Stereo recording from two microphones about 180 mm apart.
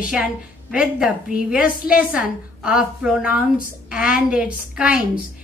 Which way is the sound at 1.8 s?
55° left (ahead or behind).